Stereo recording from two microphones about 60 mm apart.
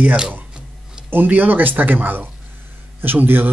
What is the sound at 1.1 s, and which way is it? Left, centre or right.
Speech, right.